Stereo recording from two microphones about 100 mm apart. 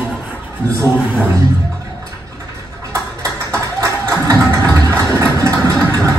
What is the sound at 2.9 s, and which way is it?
Music, 30° right (ahead or behind).